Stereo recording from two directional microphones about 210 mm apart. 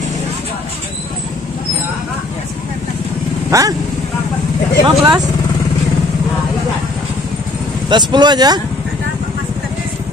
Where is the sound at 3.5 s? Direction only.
15° right (ahead or behind).